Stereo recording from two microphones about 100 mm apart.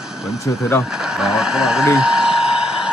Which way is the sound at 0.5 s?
30° left (ahead or behind).